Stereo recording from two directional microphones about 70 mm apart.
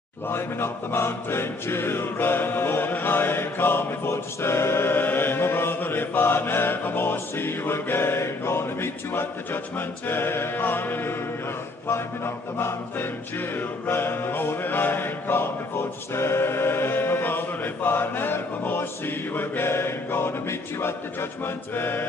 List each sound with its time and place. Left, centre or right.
0.3 s music: left
12.5 s music: left